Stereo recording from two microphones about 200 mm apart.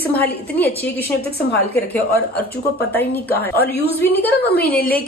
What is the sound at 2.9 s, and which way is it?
Speech, 10° left (ahead or behind).